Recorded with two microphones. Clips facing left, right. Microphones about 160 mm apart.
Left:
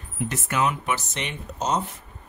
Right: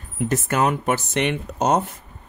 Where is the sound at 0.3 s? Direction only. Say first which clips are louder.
Right 5 dB; 45° right (ahead or behind).